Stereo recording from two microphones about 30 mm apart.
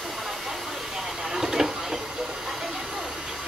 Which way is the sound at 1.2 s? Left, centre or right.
Centre.